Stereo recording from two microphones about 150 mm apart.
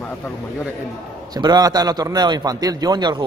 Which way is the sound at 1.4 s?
25° right (ahead or behind).